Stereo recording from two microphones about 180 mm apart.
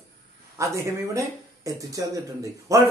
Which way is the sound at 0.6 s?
15° right (ahead or behind).